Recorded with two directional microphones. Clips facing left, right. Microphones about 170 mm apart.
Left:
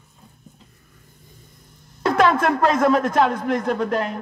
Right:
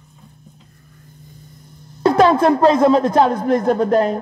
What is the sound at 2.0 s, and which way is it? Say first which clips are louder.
Speech: right 5 dB; 35° right (ahead or behind).